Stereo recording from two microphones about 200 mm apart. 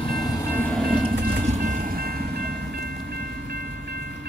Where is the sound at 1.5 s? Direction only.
40° right (ahead or behind).